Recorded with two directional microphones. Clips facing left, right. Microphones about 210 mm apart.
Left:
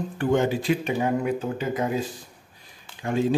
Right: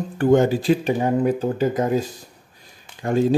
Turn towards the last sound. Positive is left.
turn(degrees=-40)  # may be behind; listen again after turning